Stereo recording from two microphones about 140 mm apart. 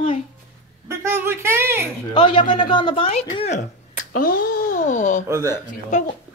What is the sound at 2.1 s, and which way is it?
Speech, 35° left (ahead or behind).